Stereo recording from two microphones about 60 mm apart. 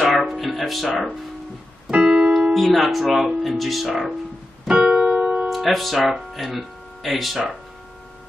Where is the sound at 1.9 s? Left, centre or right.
Centre.